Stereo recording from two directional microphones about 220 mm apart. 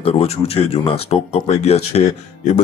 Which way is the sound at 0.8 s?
30° left (ahead or behind).